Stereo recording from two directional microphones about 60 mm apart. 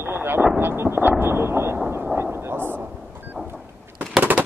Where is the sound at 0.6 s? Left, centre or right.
Right.